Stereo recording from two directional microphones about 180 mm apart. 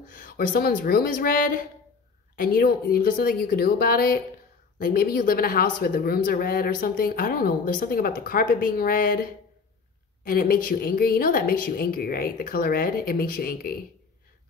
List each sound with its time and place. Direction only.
0.0 s a woman's voice: 50° left (ahead or behind)